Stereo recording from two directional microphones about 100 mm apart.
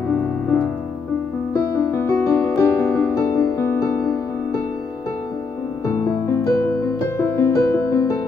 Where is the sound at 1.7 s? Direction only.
30° left (ahead or behind).